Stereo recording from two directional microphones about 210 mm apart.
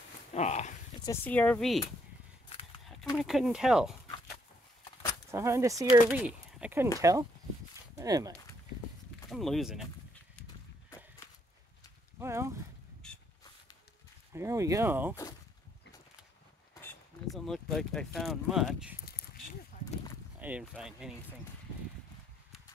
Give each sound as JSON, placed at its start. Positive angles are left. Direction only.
{"t": 0.3, "sound": "a sound", "side_deg": 35}
{"t": 1.0, "sound": "speech", "side_deg": 10}
{"t": 3.2, "sound": "speech", "side_deg": 0}
{"t": 5.3, "sound": "speech", "side_deg": -15}
{"t": 9.3, "sound": "speech", "side_deg": 0}
{"t": 12.2, "sound": "a sound", "side_deg": -15}
{"t": 13.0, "sound": "a sound", "side_deg": 5}
{"t": 14.3, "sound": "speech", "side_deg": -15}
{"t": 16.8, "sound": "speech", "side_deg": 0}
{"t": 20.3, "sound": "speech", "side_deg": -5}